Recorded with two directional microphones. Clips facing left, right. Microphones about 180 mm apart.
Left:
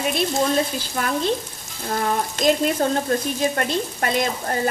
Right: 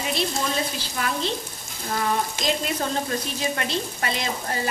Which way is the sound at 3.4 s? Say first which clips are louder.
Left 5 dB; 45° left (ahead or behind).